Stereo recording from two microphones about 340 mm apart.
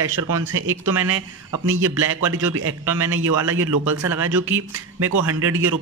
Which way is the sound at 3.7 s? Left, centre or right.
Right.